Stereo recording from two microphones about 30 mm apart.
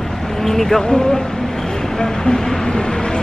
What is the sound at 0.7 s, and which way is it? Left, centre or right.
Speech, left.